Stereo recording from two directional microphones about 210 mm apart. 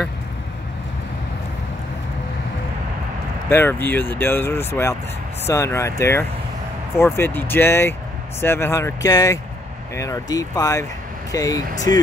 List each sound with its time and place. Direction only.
3.4 s speech: 10° left (ahead or behind)